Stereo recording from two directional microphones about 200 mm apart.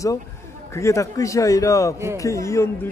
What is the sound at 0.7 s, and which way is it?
Speech, 15° left (ahead or behind).